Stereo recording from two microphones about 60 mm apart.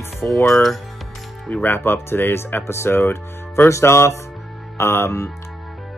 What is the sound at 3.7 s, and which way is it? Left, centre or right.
Speech, left.